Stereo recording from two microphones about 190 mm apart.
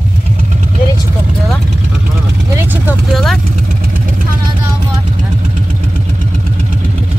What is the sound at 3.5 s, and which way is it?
Vehicle, 45° right (ahead or behind).